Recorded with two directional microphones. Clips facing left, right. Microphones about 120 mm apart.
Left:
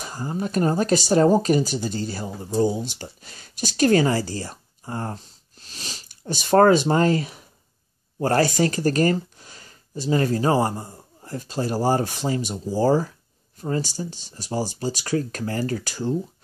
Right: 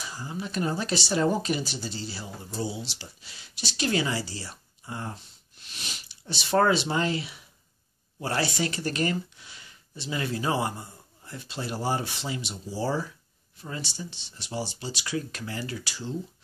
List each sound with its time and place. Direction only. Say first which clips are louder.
0.0 s speech: left 7 dB; 50° left (ahead or behind)
6.0 s speech: left 10 dB; 45° left (ahead or behind)